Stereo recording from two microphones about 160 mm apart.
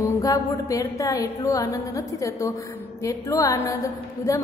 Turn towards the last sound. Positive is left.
turn(degrees=20)  # may be behind; listen again after turning